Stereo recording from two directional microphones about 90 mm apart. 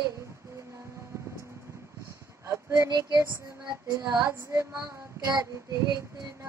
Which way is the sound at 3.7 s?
45° right (ahead or behind).